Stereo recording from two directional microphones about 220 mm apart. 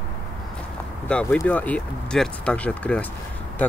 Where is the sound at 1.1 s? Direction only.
5° left (ahead or behind).